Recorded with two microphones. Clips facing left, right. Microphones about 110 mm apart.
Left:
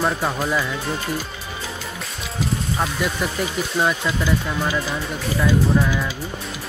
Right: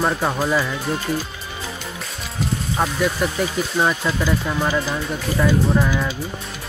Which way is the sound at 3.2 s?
Centre (ahead or behind).